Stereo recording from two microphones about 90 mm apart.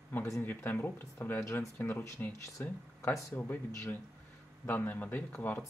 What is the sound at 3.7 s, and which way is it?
Speech, 30° left (ahead or behind).